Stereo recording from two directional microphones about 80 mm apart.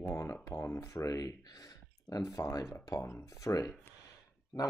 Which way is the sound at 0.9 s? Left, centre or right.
Left.